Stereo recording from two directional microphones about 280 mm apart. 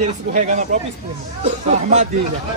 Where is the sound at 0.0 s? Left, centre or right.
Right.